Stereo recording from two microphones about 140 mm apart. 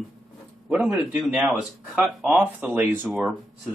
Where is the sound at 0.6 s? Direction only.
10° right (ahead or behind).